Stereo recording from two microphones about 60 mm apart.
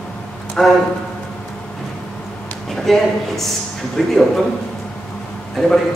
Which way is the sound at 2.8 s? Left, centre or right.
Centre.